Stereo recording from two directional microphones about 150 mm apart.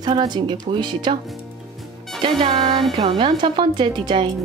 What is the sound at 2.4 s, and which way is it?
Speech, 40° right (ahead or behind).